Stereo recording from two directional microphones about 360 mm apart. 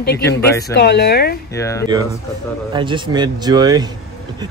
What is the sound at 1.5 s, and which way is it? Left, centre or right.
Speech, centre.